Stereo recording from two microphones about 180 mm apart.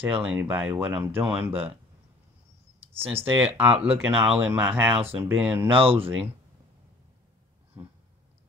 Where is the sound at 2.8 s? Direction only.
35° right (ahead or behind).